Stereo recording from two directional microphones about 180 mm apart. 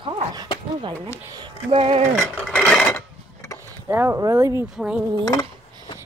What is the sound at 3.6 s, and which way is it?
Speech, 15° right (ahead or behind).